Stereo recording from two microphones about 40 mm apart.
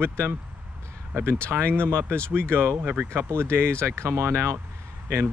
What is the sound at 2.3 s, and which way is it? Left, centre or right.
Speech, right.